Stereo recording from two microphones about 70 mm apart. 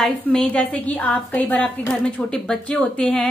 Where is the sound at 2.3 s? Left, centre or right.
Centre.